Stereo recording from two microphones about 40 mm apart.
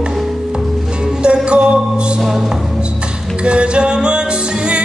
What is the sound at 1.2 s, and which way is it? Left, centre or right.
Music, right.